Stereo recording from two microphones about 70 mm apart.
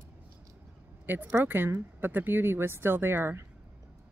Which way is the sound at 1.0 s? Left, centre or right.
Right.